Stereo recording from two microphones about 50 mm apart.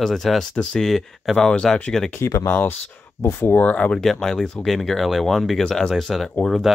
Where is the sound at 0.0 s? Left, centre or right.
Centre.